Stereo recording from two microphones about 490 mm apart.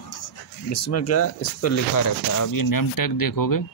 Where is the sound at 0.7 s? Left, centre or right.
Left.